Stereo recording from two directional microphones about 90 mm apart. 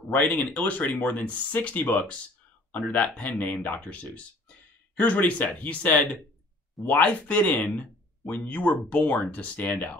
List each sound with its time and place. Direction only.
0.1 s speech: 20° left (ahead or behind)